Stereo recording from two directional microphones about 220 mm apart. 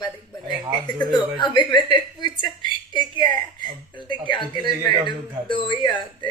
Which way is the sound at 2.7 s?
20° left (ahead or behind).